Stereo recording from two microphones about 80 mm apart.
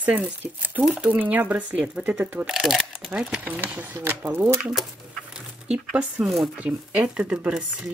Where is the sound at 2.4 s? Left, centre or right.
Centre.